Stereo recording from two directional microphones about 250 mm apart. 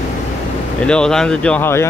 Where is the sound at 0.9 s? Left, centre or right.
Centre.